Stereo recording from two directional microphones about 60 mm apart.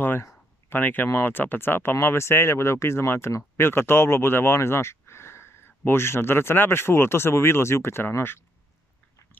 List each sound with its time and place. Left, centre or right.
0.7 s speech: left